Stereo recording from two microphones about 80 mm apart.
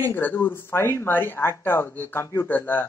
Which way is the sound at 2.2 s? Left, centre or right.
Left.